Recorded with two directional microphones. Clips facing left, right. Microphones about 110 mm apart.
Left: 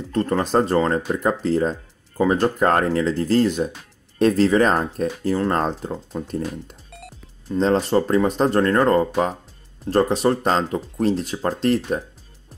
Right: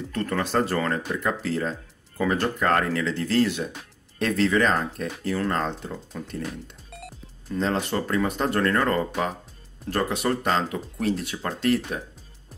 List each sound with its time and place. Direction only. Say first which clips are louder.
0.1 s speech: left 6 dB; 30° left (ahead or behind)
6.9 s music: even; centre (ahead or behind)
7.5 s speech: left 7 dB; 30° left (ahead or behind)